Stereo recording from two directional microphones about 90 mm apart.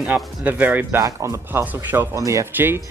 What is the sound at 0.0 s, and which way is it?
Speech, 15° right (ahead or behind).